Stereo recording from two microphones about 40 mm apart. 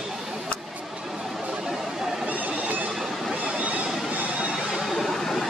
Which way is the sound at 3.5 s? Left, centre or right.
Right.